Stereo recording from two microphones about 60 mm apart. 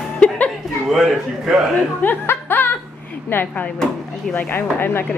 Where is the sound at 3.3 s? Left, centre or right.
Left.